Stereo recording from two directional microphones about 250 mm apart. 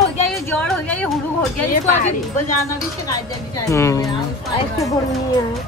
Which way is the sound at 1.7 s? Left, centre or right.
Left.